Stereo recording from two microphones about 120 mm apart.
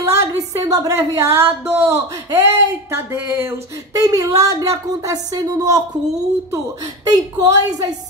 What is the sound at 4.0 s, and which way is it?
A woman's voice, 30° right (ahead or behind).